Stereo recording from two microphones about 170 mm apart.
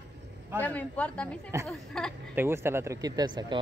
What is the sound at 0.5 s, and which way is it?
Speech, 10° left (ahead or behind).